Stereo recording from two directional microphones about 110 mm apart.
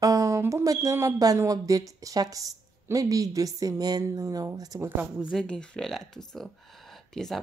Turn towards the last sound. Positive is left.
turn(degrees=5)  # may be behind; listen again after turning